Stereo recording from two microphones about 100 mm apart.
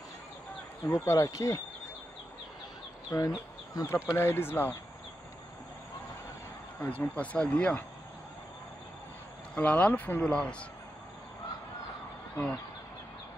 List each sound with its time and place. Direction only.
0.8 s speech: 35° left (ahead or behind)
3.1 s speech: 35° left (ahead or behind)
6.8 s speech: 20° left (ahead or behind)
9.6 s speech: 15° left (ahead or behind)